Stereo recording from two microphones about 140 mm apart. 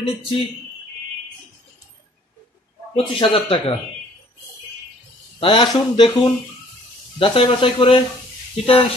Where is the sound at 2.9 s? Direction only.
40° left (ahead or behind).